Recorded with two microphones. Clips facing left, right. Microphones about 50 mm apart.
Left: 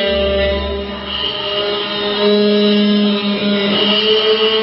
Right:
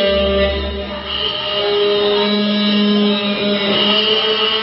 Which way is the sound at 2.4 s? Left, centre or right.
Right.